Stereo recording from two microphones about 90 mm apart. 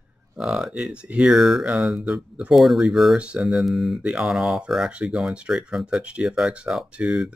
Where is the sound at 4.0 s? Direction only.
15° right (ahead or behind).